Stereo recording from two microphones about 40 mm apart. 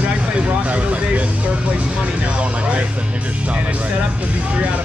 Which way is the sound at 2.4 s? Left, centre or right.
Right.